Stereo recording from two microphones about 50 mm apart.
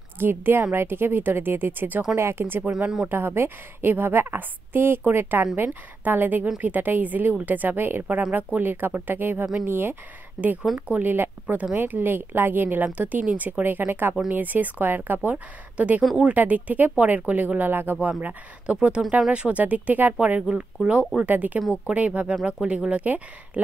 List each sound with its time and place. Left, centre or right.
0.2 s a woman's voice: right
2.1 s a woman's voice: right
8.2 s a woman's voice: right
18.2 s speech: right
19.6 s speech: right
22.3 s speech: centre